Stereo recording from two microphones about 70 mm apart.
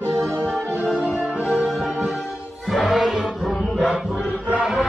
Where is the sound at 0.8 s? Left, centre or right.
Centre.